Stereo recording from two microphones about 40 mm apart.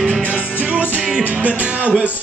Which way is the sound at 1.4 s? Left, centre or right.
Right.